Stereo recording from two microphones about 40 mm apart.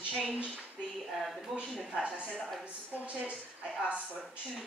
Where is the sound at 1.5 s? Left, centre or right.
Centre.